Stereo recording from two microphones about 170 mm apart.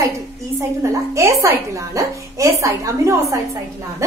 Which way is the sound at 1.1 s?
15° right (ahead or behind).